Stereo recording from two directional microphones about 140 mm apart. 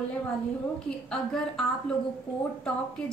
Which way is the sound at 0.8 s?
5° left (ahead or behind).